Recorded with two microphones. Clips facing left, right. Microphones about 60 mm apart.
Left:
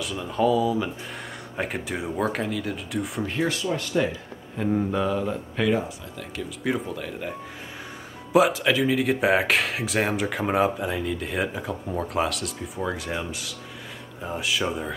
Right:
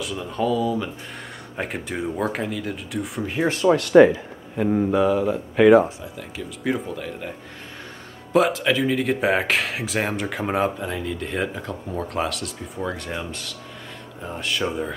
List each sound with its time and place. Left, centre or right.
0.0 s speech: centre
3.6 s speech: right
4.6 s speech: centre